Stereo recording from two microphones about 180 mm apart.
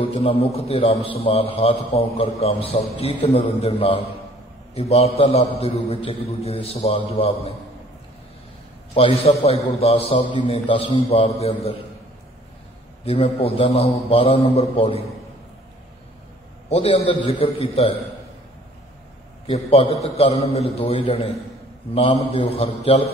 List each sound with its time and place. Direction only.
0.0 s a man's voice: 35° left (ahead or behind)
8.9 s a man's voice: 30° left (ahead or behind)
13.0 s a man's voice: 35° left (ahead or behind)
16.6 s a man's voice: 30° left (ahead or behind)
19.4 s a man's voice: 35° left (ahead or behind)